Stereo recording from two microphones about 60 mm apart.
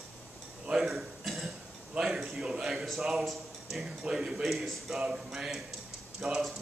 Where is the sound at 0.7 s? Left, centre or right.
Centre.